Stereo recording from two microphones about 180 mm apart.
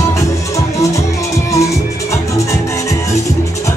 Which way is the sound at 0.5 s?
15° left (ahead or behind).